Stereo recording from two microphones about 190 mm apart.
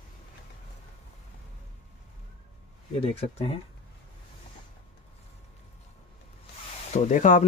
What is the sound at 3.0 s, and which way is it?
Speech, 30° left (ahead or behind).